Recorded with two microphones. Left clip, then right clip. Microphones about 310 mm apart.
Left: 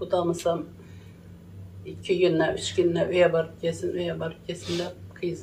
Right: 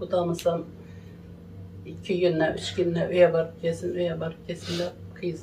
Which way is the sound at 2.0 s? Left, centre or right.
Left.